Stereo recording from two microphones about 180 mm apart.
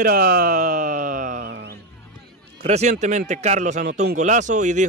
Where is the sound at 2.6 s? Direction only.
35° right (ahead or behind).